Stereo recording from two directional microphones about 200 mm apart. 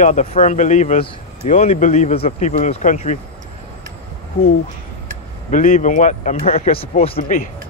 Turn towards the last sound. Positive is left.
turn(degrees=40)  # may be behind; listen again after turning